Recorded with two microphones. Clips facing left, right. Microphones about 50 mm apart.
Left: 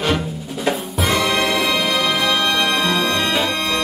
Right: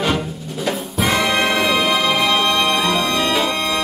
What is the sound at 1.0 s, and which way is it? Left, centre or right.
Music, centre.